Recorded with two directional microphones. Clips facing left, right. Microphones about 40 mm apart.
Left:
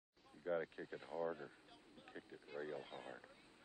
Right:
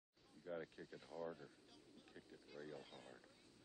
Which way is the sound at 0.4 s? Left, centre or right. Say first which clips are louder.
Left 8 dB; left.